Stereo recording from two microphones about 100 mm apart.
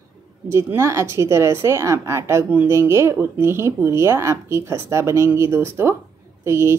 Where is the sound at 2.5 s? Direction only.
15° right (ahead or behind).